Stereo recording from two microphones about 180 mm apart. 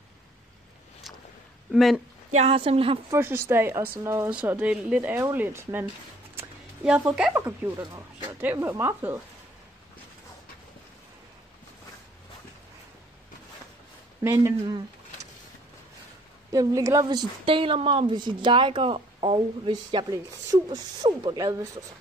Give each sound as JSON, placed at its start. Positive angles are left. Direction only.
{"t": 1.7, "sound": "speech", "side_deg": 0}
{"t": 2.3, "sound": "a woman's voice", "side_deg": -30}
{"t": 3.1, "sound": "a woman's voice", "side_deg": -15}
{"t": 6.3, "sound": "a sound", "side_deg": -5}
{"t": 7.2, "sound": "a woman's voice", "side_deg": -10}
{"t": 14.2, "sound": "a woman's voice", "side_deg": -15}
{"t": 16.5, "sound": "a woman's voice", "side_deg": -20}